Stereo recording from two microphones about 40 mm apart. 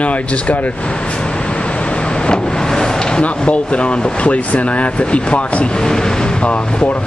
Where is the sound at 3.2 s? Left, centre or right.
Left.